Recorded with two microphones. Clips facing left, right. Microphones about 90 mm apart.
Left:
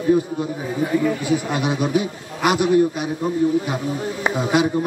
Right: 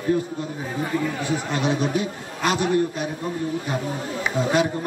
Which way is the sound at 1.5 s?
15° left (ahead or behind).